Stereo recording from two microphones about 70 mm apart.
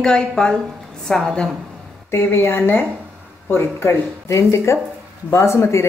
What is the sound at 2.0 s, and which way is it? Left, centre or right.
A woman's voice, left.